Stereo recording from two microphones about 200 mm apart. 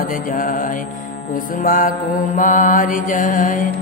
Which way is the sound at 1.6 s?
40° left (ahead or behind).